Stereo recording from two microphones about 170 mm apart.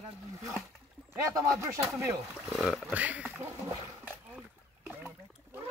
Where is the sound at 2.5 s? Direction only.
Centre (ahead or behind).